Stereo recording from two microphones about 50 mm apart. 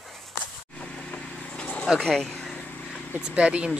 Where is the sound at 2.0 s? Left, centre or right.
Centre.